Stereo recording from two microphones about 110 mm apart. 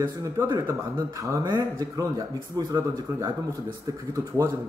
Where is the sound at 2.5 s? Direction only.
35° right (ahead or behind).